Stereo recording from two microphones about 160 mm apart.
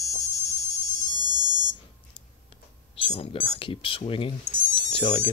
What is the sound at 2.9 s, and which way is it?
Speech, 35° left (ahead or behind).